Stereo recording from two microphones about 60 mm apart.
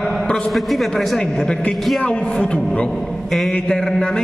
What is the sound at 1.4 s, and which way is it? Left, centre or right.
Speech, centre.